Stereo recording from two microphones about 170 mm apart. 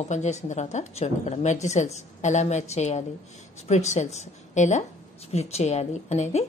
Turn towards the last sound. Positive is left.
turn(degrees=40)  # may be behind; listen again after turning